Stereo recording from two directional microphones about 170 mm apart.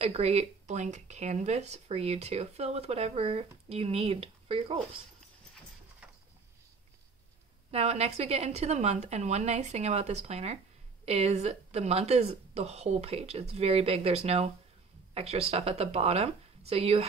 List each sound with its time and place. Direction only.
0.0 s speech: 40° right (ahead or behind)
7.7 s speech: 40° right (ahead or behind)